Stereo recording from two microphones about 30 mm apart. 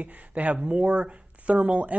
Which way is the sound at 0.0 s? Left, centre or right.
Right.